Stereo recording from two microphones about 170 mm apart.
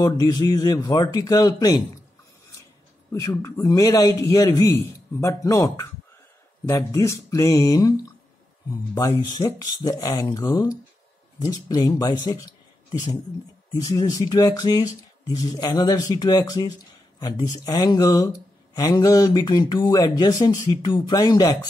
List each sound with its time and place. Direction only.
0.0 s speech: 25° left (ahead or behind)
3.1 s speech: 20° left (ahead or behind)
9.4 s speech: 20° left (ahead or behind)